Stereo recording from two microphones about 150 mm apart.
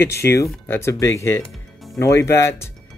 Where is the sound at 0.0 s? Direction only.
20° left (ahead or behind).